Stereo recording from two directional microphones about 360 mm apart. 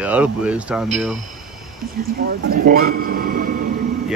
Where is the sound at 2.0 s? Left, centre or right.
Right.